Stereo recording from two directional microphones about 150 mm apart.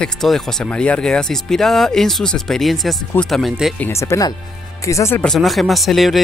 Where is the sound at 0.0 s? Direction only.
5° left (ahead or behind).